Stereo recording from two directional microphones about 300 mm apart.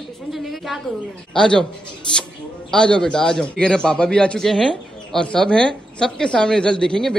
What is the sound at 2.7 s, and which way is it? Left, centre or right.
A man's voice, centre.